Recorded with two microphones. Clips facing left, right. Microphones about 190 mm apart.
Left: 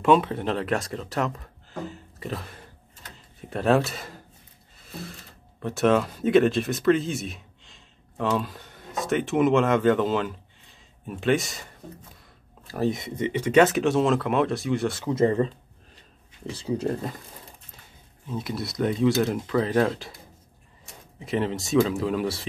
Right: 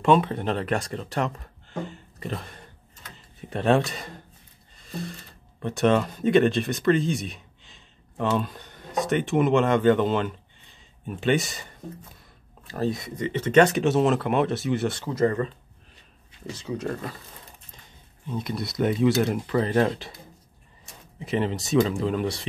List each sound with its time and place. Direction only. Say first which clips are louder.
0.0 s speech: even; centre (ahead or behind)
1.9 s a sound: even; centre (ahead or behind)
3.3 s speech: even; centre (ahead or behind)
4.7 s music: right 4 dB; 5° left (ahead or behind)
5.6 s speech: even; centre (ahead or behind)
12.8 s speech: left 1 dB; 20° left (ahead or behind)
13.3 s speech: even; 10° left (ahead or behind)
15.0 s speech: left 3 dB; 25° left (ahead or behind)
18.2 s speech: right 1 dB; centre (ahead or behind)
21.2 s speech: even; centre (ahead or behind)